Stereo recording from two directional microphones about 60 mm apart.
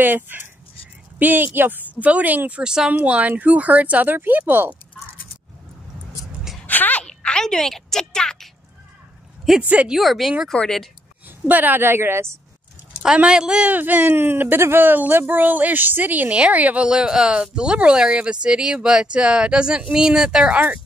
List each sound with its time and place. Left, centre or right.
0.0 s speech: right; by 2.9 s centre
2.9 s speech: right
6.6 s a sound: left
7.1 s a sound: centre
9.6 s speech: right
9.8 s speech: centre
10.5 s speech: centre
11.2 s a woman's voice: right
13.0 s a woman's voice: centre
13.7 s speech: right